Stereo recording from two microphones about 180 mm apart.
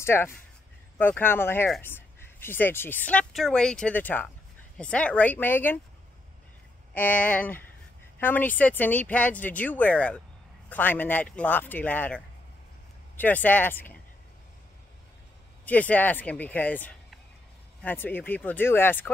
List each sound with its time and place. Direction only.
0.0 s speech: 15° left (ahead or behind)
6.9 s speech: 10° left (ahead or behind)
15.6 s speech: 10° left (ahead or behind)